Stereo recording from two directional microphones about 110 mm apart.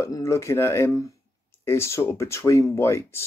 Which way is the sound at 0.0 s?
25° left (ahead or behind).